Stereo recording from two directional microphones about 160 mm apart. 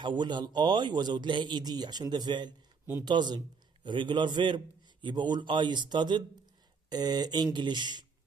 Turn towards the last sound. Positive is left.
turn(degrees=-30)  # may be behind; listen again after turning